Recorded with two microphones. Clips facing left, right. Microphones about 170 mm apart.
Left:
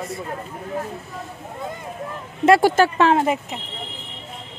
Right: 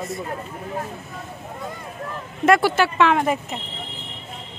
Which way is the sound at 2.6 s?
40° left (ahead or behind).